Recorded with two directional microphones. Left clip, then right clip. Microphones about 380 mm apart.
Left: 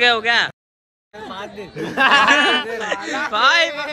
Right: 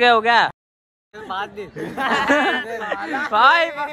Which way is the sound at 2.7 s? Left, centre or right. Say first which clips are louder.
Left 1 dB; centre.